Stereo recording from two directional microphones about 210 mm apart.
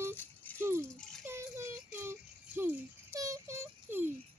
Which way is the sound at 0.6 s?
10° right (ahead or behind).